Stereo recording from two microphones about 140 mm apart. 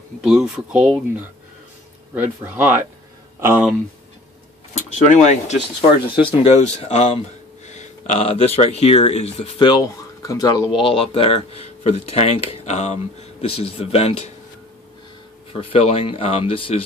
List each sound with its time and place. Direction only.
0.2 s speech: 5° right (ahead or behind)
4.8 s speech: 60° left (ahead or behind)
6.1 s speech: 40° left (ahead or behind)
6.5 s speech: 55° left (ahead or behind)
9.6 s speech: 25° left (ahead or behind)
10.8 s speech: 40° left (ahead or behind)
15.5 s speech: 40° left (ahead or behind)